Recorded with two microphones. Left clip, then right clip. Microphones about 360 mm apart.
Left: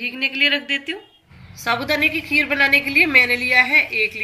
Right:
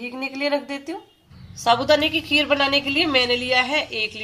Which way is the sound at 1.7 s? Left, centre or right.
Centre.